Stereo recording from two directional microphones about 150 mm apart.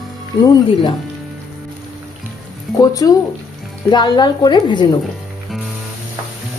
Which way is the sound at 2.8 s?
25° left (ahead or behind).